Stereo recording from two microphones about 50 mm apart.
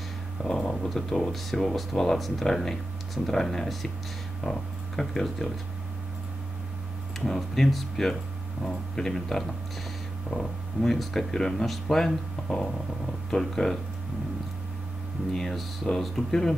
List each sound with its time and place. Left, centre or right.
0.6 s a sound: centre
0.8 s speech: centre
7.2 s speech: centre
15.3 s speech: centre